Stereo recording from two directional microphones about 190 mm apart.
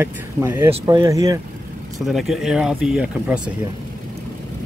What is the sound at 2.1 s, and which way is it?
Speech, centre (ahead or behind).